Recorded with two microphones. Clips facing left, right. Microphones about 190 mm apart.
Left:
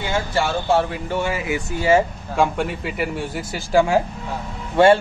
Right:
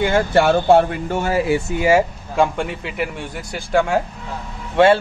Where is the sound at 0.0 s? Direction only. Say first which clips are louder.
Right 7 dB; 55° right (ahead or behind); by 1.6 s 35° right (ahead or behind).